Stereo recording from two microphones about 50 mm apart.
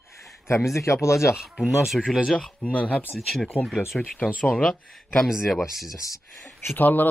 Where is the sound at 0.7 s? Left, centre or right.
Left.